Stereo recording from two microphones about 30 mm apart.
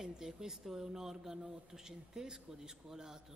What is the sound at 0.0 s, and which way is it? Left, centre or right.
A man's voice, centre.